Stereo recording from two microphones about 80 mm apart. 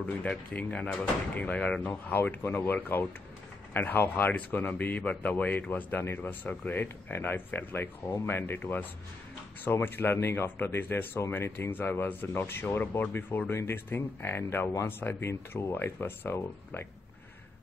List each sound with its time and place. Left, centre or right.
0.0 s speech: centre; by 16.8 s left